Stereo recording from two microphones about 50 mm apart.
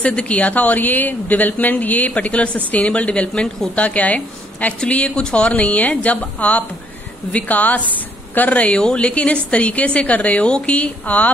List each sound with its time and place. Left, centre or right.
0.0 s a woman's voice: left